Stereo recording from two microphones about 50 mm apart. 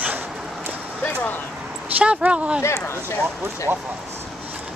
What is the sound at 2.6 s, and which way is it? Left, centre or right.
Speech, left.